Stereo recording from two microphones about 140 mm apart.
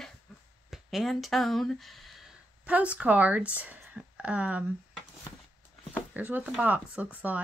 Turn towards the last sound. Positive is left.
turn(degrees=-10)  # may be behind; listen again after turning